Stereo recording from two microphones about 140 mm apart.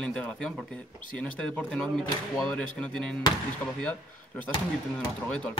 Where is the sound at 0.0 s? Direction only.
10° left (ahead or behind).